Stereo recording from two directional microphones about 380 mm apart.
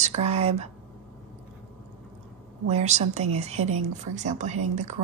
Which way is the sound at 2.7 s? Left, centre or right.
Centre.